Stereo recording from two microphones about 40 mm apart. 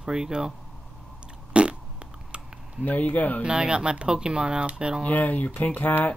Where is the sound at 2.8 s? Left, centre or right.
Left.